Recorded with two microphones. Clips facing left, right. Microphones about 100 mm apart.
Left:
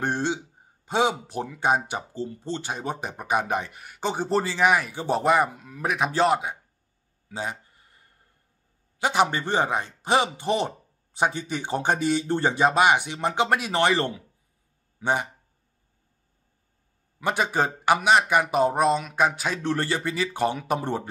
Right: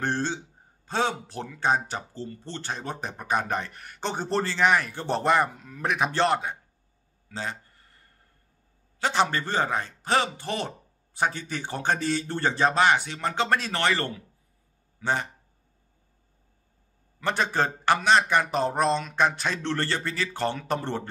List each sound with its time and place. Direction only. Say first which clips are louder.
0.0 s speech: left 2 dB; 15° left (ahead or behind)
7.2 s a sound: left 2 dB; 10° left (ahead or behind)
9.0 s speech: left 2 dB; 15° left (ahead or behind)
17.2 s speech: left 1 dB; 10° left (ahead or behind)